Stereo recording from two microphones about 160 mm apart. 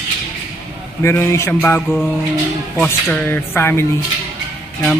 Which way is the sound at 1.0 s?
15° left (ahead or behind).